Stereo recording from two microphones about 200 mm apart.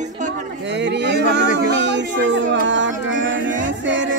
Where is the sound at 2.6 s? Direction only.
65° right (ahead or behind).